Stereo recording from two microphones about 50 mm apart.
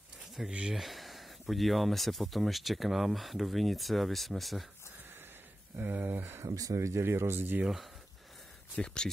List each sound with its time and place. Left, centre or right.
0.5 s speech: right
0.7 s speech: centre
5.8 s speech: right
6.4 s speech: right
7.0 s speech: right
8.8 s speech: centre